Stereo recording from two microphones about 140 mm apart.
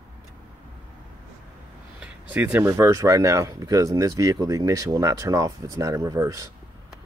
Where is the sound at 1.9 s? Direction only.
10° right (ahead or behind).